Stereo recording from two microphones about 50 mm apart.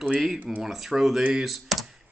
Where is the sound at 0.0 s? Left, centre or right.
Centre.